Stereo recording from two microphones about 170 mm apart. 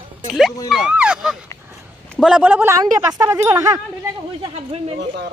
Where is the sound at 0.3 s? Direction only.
Centre (ahead or behind); by 3.8 s 15° right (ahead or behind).